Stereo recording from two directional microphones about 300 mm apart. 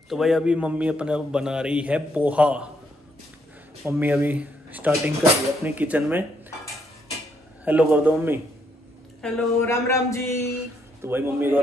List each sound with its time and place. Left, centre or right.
0.1 s a man's voice: centre
3.8 s a man's voice: centre
7.6 s a man's voice: centre
9.2 s speech: centre
11.1 s a man's voice: centre